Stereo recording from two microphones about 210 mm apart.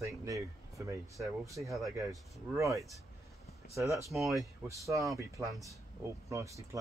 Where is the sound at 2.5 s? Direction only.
15° right (ahead or behind).